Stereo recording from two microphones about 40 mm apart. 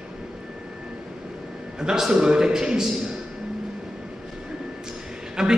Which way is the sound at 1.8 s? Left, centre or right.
Centre.